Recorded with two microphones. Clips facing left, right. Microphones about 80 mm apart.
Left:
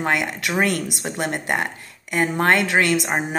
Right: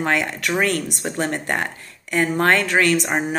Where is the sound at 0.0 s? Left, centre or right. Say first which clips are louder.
Right 1 dB; centre.